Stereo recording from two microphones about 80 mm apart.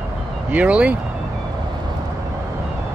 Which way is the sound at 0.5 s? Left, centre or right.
Centre.